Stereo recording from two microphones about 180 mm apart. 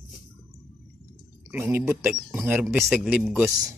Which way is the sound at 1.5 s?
10° right (ahead or behind).